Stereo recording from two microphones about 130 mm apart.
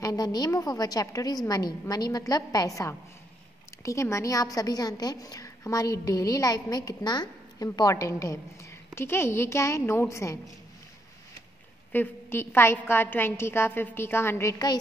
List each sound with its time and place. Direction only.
0.0 s a woman's voice: 30° left (ahead or behind)
11.9 s a woman's voice: 15° left (ahead or behind)